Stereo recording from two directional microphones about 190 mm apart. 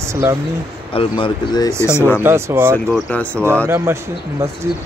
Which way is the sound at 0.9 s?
25° left (ahead or behind).